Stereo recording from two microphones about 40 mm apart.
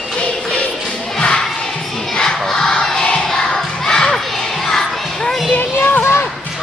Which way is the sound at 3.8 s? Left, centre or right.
Centre.